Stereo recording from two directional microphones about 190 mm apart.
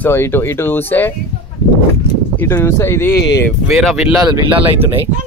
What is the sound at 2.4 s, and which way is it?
Speech, 15° left (ahead or behind).